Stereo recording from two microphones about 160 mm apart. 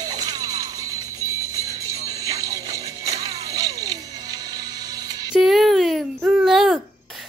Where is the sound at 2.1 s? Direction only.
20° right (ahead or behind).